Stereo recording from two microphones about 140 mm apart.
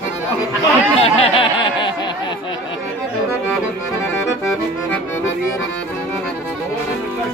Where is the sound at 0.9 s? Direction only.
45° left (ahead or behind).